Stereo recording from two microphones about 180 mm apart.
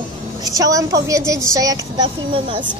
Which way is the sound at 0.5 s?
20° right (ahead or behind).